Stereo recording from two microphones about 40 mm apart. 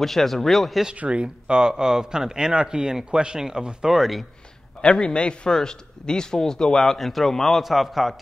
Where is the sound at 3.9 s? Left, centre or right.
Centre.